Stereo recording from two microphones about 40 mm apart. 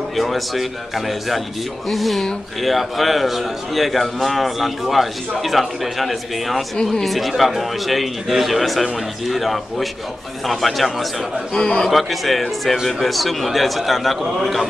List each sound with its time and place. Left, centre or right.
0.1 s a man's voice: centre
6.8 s a man's voice: centre
7.1 s a man's voice: centre
11.5 s a man's voice: centre
11.9 s a man's voice: centre